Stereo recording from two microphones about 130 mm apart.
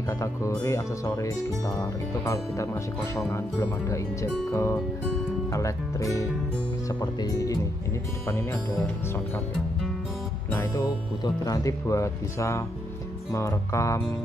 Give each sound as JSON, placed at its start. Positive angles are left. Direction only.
{"t": 0.2, "sound": "speech", "side_deg": 25}
{"t": 10.5, "sound": "speech", "side_deg": 20}